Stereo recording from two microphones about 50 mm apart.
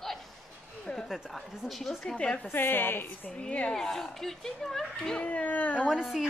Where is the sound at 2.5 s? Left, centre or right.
Left.